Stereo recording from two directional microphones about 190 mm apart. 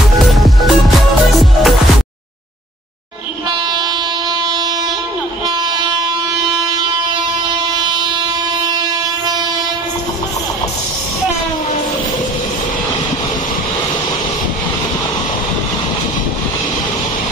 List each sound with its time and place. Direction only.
0.4 s music: centre (ahead or behind)
7.8 s train: 25° right (ahead or behind)